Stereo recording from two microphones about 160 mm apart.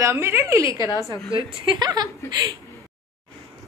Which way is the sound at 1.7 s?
25° right (ahead or behind).